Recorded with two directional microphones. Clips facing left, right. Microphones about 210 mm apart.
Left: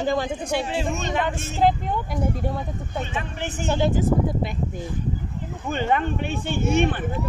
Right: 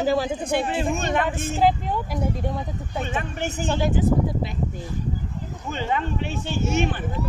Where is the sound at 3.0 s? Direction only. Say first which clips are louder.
Right 2 dB; 50° right (ahead or behind).